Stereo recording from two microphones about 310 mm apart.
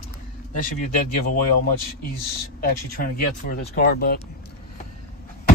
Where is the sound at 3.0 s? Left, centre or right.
Left.